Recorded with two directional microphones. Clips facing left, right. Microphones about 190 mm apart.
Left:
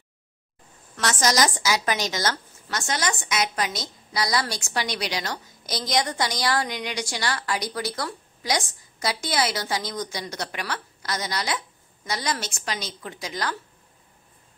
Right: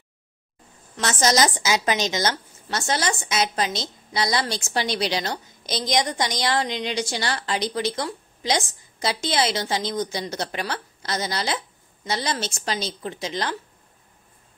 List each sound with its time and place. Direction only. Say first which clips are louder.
0.9 s a woman's voice: right 2 dB; 25° right (ahead or behind)